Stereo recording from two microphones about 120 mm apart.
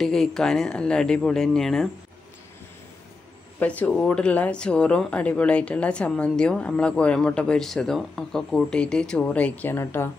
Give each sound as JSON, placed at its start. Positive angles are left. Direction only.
{"t": 0.0, "sound": "speech", "side_deg": 5}
{"t": 3.5, "sound": "speech", "side_deg": 10}